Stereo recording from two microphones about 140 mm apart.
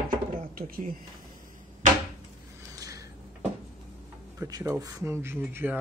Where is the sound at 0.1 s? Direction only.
85° right.